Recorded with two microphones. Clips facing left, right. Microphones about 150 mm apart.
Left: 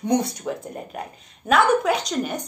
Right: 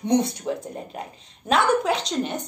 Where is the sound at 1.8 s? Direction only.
25° right (ahead or behind).